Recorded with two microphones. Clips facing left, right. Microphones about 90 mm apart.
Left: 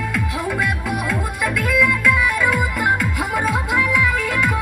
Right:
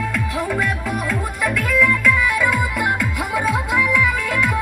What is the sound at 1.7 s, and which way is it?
Music, 5° left (ahead or behind).